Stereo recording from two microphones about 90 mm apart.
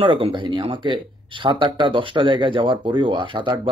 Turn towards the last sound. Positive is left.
turn(degrees=-65)  # may be behind; listen again after turning